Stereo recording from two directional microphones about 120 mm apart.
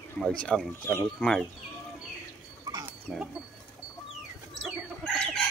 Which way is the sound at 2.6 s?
30° right (ahead or behind).